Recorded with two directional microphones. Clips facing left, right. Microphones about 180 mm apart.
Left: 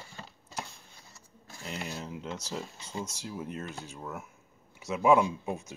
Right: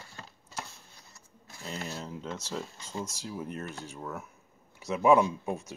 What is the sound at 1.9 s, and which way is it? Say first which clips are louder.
Speech: even; 5° left (ahead or behind).